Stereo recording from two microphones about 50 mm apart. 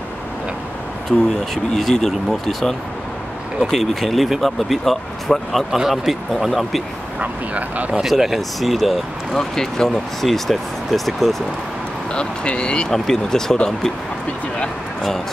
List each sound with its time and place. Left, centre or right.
1.8 s speech: centre
7.2 s speech: right
8.0 s speech: centre
9.3 s speech: centre
12.1 s speech: centre